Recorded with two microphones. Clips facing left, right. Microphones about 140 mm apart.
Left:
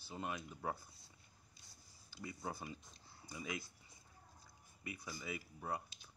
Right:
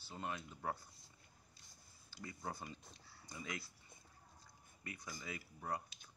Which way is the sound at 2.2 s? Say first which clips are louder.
Left 1 dB; 10° left (ahead or behind).